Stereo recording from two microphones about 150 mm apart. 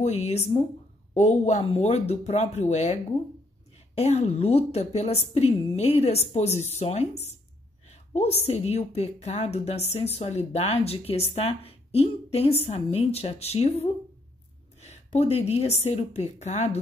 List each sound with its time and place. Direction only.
0.0 s a woman's voice: 45° left (ahead or behind)